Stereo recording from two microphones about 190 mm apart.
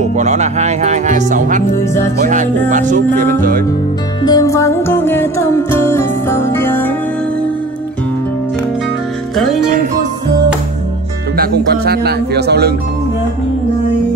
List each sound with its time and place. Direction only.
0.1 s speech: 35° right (ahead or behind)
3.1 s music: 10° left (ahead or behind)
11.3 s speech: 55° right (ahead or behind)